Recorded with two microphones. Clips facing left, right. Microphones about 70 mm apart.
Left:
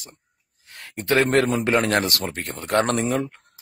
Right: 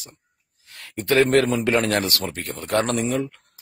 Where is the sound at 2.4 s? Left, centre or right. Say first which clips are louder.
Left 1 dB; left.